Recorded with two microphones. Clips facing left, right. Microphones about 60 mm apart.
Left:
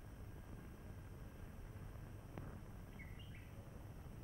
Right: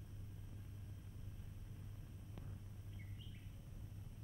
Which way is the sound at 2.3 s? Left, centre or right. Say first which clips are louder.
Left 4 dB; left.